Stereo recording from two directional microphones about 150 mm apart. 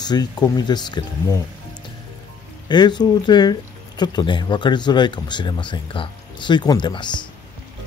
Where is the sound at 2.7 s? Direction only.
30° left (ahead or behind).